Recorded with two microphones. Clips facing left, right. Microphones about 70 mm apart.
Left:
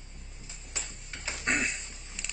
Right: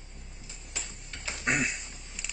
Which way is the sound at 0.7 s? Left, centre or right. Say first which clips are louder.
Even; centre.